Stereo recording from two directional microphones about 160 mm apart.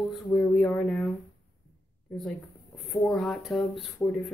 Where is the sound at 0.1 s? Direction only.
Centre (ahead or behind).